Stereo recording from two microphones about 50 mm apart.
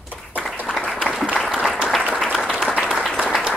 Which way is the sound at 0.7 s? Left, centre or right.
Centre.